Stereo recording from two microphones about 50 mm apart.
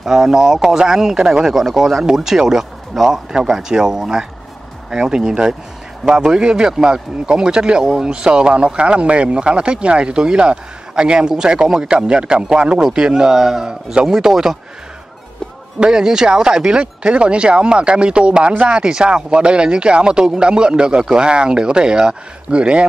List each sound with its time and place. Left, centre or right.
0.0 s speech: centre
15.8 s speech: centre